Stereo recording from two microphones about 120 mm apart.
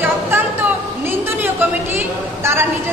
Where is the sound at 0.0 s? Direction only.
15° right (ahead or behind).